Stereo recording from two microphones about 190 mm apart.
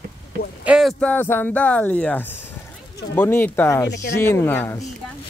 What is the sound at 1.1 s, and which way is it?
Speech, 10° left (ahead or behind).